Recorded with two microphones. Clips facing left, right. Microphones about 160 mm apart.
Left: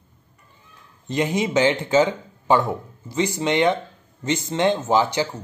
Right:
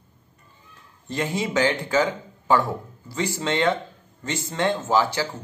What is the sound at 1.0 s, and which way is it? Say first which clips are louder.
Speech: left 4 dB; 20° left (ahead or behind).